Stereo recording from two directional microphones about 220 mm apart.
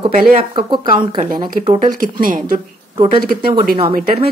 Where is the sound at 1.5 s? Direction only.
35° right (ahead or behind).